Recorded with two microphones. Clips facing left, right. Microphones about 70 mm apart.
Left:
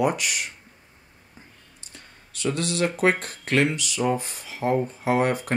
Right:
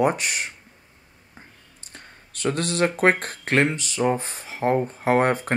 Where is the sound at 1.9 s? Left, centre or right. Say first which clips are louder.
Right 2 dB; right.